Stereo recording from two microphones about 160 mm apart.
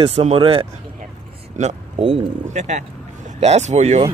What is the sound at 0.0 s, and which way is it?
Speech, 40° right (ahead or behind).